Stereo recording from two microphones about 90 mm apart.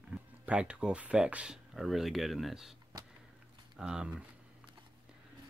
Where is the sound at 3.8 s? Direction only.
10° right (ahead or behind).